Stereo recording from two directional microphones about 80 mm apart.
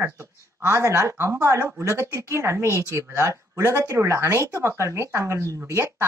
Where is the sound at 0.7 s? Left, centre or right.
Right.